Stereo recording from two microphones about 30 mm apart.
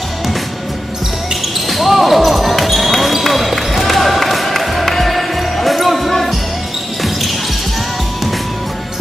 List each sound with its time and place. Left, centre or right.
1.7 s basketball bounce: centre
3.8 s music: centre